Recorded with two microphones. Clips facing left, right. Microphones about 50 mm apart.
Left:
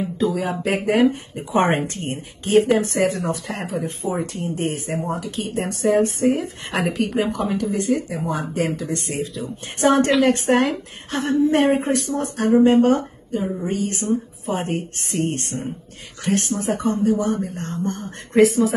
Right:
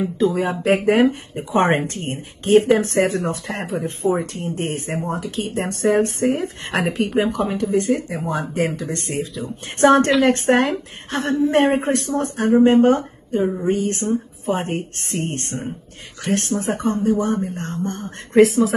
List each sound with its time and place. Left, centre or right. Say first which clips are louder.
0.2 s speech: right 2 dB; right
2.0 s a woman's voice: right 5 dB; right
18.4 s speech: right 1 dB; right